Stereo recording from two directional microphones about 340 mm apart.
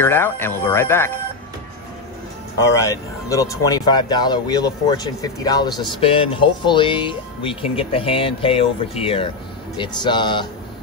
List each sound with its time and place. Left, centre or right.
0.0 s speech: centre
2.6 s speech: centre